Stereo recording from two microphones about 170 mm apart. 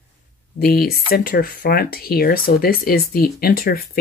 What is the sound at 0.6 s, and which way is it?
Speech, 65° left (ahead or behind).